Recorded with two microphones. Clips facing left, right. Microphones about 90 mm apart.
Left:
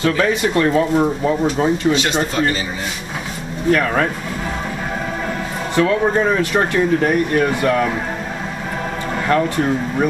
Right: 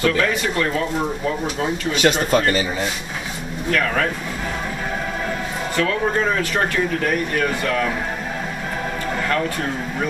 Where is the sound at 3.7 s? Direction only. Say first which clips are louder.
Left 5 dB; 25° left (ahead or behind).